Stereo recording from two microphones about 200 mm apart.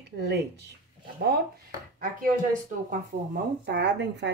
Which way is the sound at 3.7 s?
60° right (ahead or behind).